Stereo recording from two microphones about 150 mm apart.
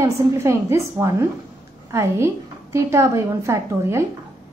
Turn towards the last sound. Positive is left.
turn(degrees=-20)  # may be behind; listen again after turning